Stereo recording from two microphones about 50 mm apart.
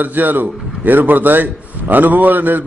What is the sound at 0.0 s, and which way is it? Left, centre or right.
A man's voice, right.